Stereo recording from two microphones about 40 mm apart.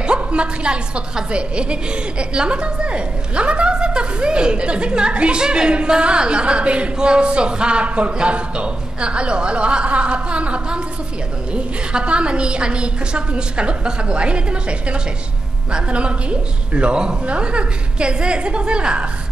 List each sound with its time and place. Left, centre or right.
0.0 s a woman's voice: right